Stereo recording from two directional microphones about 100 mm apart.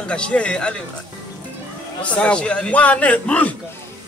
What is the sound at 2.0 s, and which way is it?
A man's voice, 10° left (ahead or behind).